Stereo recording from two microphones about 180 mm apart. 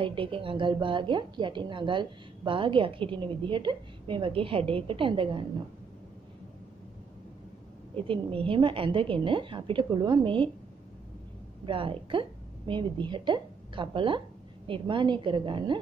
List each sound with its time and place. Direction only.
0.0 s a woman's voice: 30° right (ahead or behind)
7.9 s a woman's voice: 30° right (ahead or behind)
11.6 s a woman's voice: 30° right (ahead or behind)